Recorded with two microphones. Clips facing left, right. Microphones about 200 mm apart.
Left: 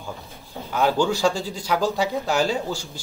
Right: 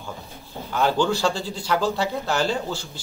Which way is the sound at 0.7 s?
5° left (ahead or behind).